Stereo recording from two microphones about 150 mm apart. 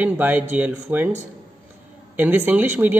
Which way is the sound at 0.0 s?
10° right (ahead or behind).